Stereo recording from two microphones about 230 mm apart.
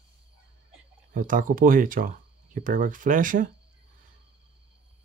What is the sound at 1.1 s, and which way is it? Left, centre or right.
Speech, right.